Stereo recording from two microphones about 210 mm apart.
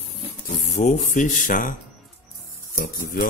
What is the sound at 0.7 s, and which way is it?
Speech, 35° left (ahead or behind).